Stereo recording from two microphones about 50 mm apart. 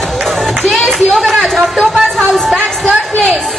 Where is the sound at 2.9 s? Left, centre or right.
Right.